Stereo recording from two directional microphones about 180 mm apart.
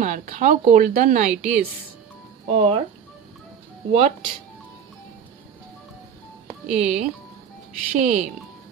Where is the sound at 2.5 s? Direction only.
30° right (ahead or behind).